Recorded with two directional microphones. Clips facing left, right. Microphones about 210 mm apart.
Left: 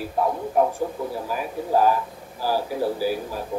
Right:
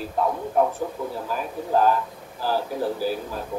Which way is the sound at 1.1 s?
10° left (ahead or behind).